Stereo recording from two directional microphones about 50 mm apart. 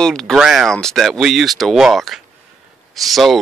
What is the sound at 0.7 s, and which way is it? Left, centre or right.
Speech, centre.